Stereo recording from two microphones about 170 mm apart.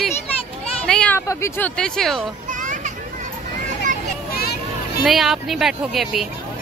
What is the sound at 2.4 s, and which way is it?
Children playing, 50° right (ahead or behind).